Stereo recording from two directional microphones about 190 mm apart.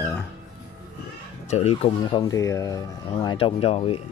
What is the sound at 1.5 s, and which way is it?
Speech, 35° left (ahead or behind).